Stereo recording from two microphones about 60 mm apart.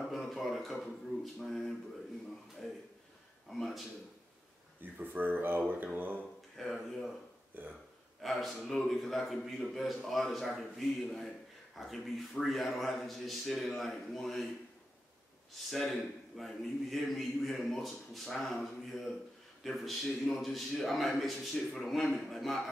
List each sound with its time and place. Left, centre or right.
0.0 s a man's voice: centre
3.4 s a man's voice: centre
4.9 s speech: right
6.5 s a man's voice: centre
7.5 s speech: right
8.2 s a man's voice: centre
15.5 s a man's voice: centre